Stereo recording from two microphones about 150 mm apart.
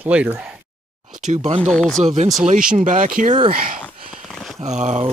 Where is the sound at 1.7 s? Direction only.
5° left (ahead or behind).